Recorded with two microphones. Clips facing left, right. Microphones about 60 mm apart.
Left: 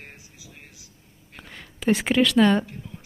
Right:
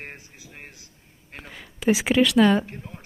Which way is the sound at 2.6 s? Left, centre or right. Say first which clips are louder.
Right 1 dB; right.